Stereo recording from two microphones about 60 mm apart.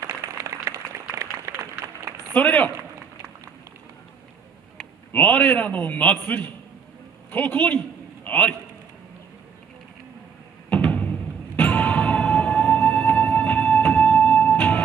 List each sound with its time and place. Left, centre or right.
0.0 s a sound: right
2.3 s a man's voice: left
5.1 s a man's voice: left
10.7 s music: left